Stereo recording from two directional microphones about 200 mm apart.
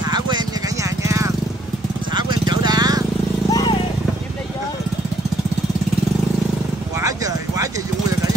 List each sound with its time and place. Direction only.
0.8 s vehicle: 15° right (ahead or behind)
3.4 s vehicle: 20° left (ahead or behind)
7.0 s clip-clop: 15° right (ahead or behind)